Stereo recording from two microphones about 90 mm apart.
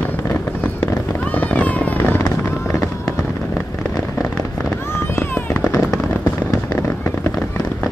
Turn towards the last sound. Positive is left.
turn(degrees=35)  # may be behind; listen again after turning